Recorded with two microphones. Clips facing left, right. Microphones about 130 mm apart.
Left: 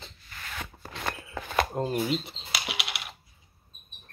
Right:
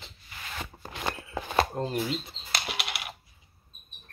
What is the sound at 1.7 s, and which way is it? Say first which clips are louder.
Typing: left 2 dB; 10° left (ahead or behind).